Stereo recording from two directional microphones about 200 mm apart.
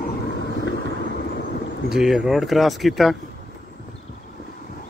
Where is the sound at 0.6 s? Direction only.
55° left (ahead or behind).